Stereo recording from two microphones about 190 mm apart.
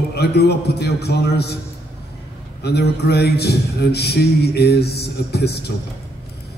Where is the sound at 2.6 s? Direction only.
60° left (ahead or behind).